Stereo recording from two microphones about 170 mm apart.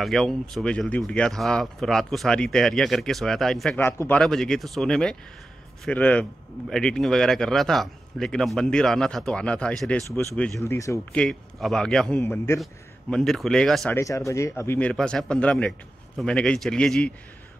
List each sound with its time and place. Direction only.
0.0 s a man's voice: centre (ahead or behind)
10.7 s a man's voice: 20° left (ahead or behind)
11.1 s speech: 5° left (ahead or behind)
12.2 s a man's voice: 15° left (ahead or behind)
13.1 s speech: centre (ahead or behind)
13.9 s a man's voice: 20° left (ahead or behind)